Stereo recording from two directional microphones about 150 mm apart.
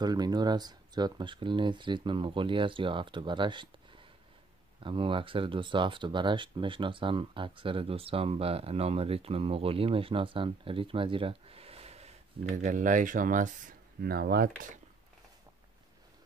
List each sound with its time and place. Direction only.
0.0 s speech: 25° right (ahead or behind); by 14.5 s 90° right